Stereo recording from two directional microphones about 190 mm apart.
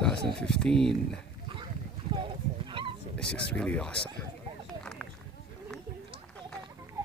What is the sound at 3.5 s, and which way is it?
Speech, 5° left (ahead or behind).